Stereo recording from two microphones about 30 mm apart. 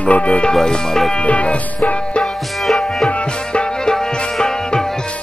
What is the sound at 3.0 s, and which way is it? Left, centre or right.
Music, left.